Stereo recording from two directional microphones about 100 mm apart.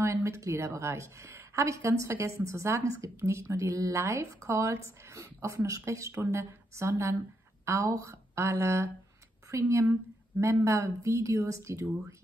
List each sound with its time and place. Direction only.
0.0 s a woman's voice: 30° right (ahead or behind)